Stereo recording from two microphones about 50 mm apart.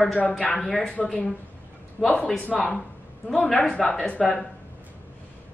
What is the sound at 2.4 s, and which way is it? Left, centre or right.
A woman's voice, left.